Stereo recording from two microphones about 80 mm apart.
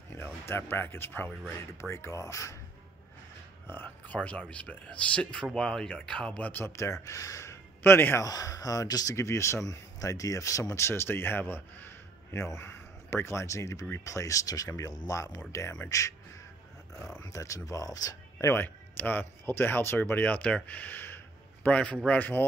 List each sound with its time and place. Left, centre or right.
0.1 s speech: left
3.6 s speech: left
6.6 s speech: left
8.2 s speech: left
9.1 s speech: left
17.2 s speech: left
18.5 s speech: left